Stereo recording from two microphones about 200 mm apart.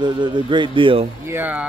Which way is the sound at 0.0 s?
25° right (ahead or behind).